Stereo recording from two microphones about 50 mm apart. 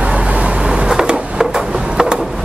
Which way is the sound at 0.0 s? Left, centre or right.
Right.